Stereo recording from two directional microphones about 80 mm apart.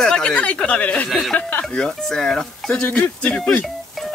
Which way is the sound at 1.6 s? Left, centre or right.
Centre.